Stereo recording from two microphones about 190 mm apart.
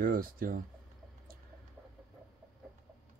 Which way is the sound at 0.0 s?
50° right (ahead or behind).